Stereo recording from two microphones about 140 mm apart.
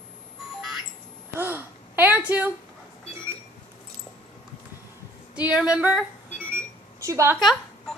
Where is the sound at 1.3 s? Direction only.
15° right (ahead or behind).